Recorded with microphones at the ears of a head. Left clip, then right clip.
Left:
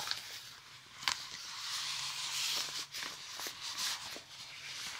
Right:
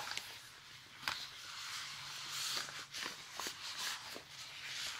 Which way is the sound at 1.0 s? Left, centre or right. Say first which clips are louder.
Left 5 dB; left.